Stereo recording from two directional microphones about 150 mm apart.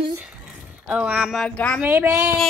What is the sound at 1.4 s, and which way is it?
Speech, 5° left (ahead or behind).